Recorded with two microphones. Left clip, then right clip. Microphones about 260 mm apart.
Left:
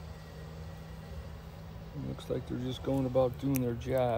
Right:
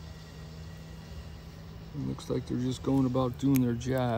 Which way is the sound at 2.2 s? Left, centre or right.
Right.